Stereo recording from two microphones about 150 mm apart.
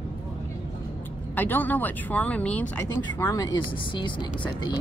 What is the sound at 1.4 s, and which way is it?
A woman's voice, 10° left (ahead or behind).